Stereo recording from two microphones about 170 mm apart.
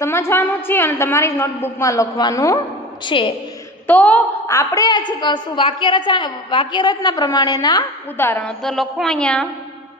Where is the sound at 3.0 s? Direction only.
30° left (ahead or behind).